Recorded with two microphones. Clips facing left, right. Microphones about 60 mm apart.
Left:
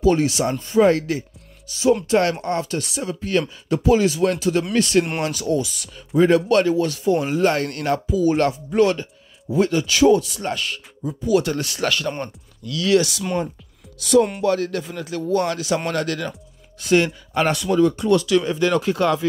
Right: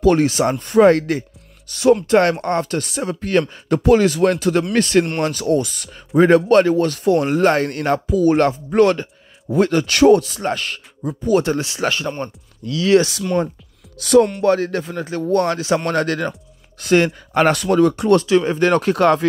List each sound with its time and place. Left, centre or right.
0.0 s speech: right
0.3 s speech: right
0.6 s speech: right
2.0 s speech: right
7.1 s speech: right
7.5 s speech: right
8.1 s speech: right
8.4 s speech: right
10.3 s speech: right
11.4 s speech: right
13.9 s music: right
14.4 s speech: right
18.2 s speech: right